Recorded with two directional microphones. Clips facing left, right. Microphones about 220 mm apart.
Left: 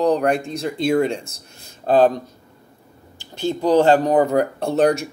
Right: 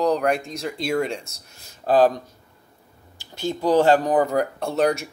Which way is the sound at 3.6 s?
20° left (ahead or behind).